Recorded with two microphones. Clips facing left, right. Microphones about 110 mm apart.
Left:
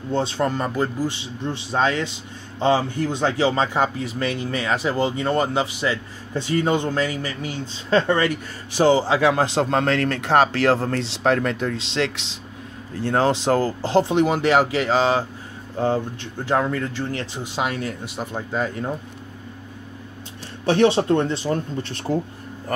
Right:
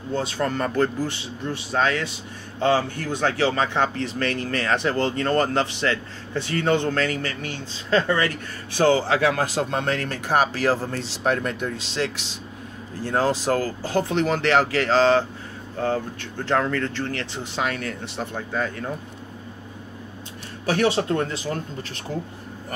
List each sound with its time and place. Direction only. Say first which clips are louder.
0.1 s speech: left 3 dB; 25° left (ahead or behind); by 5.9 s 5° left (ahead or behind)
6.3 s speech: left 1 dB; 20° left (ahead or behind)
7.9 s speech: left 2 dB; 25° left (ahead or behind)
8.7 s speech: left 2 dB; 15° left (ahead or behind)
9.8 s speech: left 5 dB; 90° left
10.5 s speech: left 3 dB; 80° left
10.9 s speech: left 4 dB; 90° left
13.1 s speech: left 3 dB; 25° left (ahead or behind)
16.4 s speech: left 1 dB; 10° left (ahead or behind)
18.0 s speech: even; 5° left (ahead or behind)
18.3 s speech: left 3 dB; 20° left (ahead or behind)
20.6 s speech: left 4 dB; 25° left (ahead or behind)